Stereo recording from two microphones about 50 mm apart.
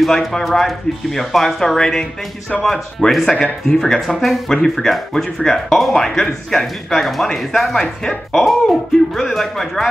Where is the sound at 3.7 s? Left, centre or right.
Centre.